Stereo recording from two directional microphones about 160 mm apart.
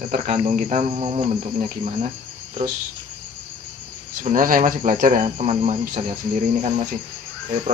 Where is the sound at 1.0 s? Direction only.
35° right (ahead or behind).